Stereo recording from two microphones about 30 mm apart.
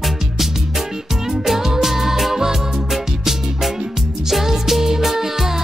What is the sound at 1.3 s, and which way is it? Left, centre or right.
Music, centre.